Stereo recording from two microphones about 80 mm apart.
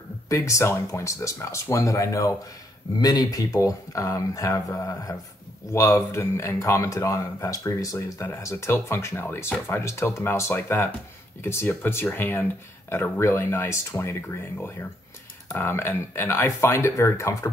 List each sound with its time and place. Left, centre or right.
0.3 s speech: left
3.0 s speech: left
15.4 s speech: left